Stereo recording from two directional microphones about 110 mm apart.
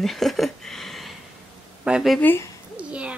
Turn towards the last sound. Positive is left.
turn(degrees=-10)  # may be behind; listen again after turning